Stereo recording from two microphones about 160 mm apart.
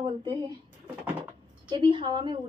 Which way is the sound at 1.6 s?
30° right (ahead or behind).